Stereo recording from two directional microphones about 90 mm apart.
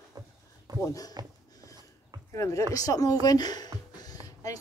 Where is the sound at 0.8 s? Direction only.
40° left (ahead or behind).